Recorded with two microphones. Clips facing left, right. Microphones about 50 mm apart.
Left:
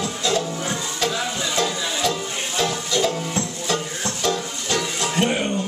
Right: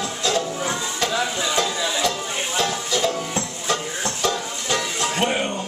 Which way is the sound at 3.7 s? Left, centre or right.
Centre.